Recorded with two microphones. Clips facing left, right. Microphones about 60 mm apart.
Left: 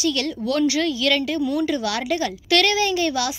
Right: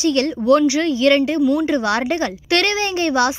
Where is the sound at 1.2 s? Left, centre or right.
Centre.